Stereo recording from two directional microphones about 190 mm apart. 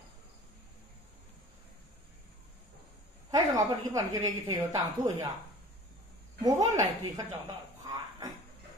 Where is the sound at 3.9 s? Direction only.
20° right (ahead or behind).